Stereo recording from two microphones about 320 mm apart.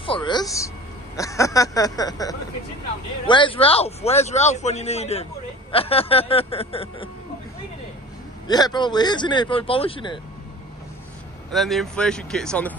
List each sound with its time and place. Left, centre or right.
0.0 s speech: centre
8.5 s speech: centre
11.5 s speech: centre